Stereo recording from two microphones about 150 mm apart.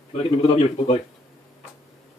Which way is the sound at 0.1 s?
40° left (ahead or behind).